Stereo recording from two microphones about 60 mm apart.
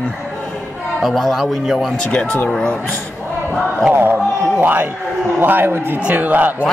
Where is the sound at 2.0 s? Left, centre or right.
Centre.